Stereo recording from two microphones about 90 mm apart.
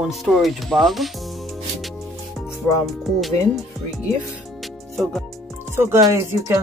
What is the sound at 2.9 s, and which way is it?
Speech, centre (ahead or behind).